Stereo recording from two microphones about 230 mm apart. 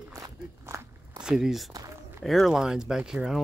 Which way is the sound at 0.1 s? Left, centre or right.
Centre.